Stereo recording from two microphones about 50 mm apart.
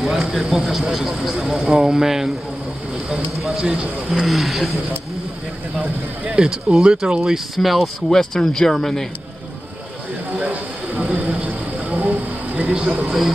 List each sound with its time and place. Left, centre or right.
0.0 s speech: centre
1.6 s speech: centre
5.8 s speech: right
7.5 s speech: centre
8.1 s speech: centre
10.3 s a sound: right